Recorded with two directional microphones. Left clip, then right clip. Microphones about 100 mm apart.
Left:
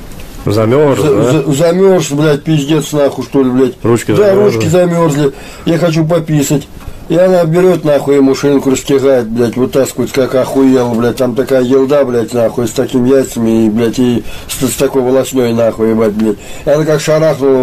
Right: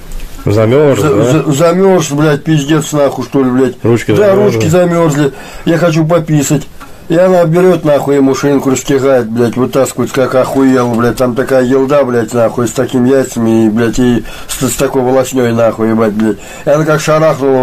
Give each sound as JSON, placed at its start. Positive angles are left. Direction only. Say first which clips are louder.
{"t": 0.5, "sound": "speech", "louder": "right 1 dB", "side_deg": 5}
{"t": 1.0, "sound": "a man's voice", "louder": "even", "side_deg": 20}
{"t": 10.6, "sound": "a man's voice", "louder": "even", "side_deg": 30}